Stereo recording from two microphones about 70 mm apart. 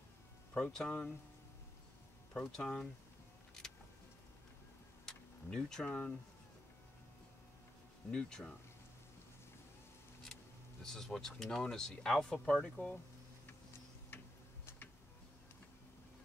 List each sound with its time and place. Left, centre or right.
0.6 s speech: centre
2.3 s speech: centre
5.0 s vehicle: centre
5.9 s speech: left
8.1 s speech: centre
10.8 s speech: centre